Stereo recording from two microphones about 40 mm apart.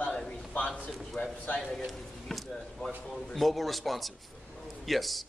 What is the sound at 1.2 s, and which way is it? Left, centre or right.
Speech, left.